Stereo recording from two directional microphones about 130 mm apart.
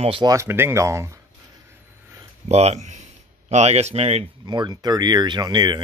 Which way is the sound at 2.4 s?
55° right (ahead or behind).